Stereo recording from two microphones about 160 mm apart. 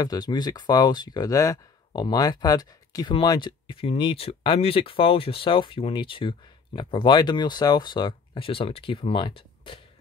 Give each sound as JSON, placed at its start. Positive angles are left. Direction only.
{"t": 0.0, "sound": "speech", "side_deg": 25}